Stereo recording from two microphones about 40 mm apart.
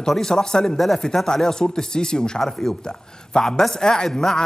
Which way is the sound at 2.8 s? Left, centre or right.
Centre.